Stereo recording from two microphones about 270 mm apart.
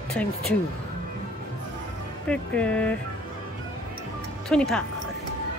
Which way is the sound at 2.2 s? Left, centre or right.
Centre.